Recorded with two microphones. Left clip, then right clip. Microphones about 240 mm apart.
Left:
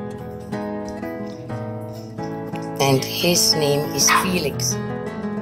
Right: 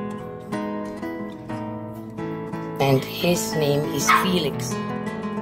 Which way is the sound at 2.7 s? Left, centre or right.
Centre.